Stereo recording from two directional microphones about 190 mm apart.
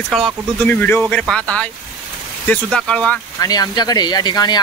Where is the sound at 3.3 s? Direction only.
20° left (ahead or behind).